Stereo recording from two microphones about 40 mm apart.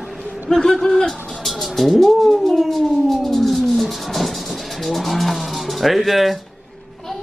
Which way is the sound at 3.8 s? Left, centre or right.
Centre.